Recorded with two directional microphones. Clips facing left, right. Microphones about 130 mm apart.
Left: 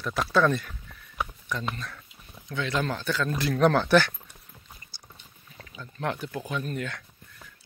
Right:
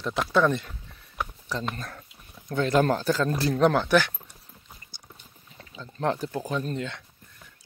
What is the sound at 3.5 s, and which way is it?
Speech, 15° right (ahead or behind).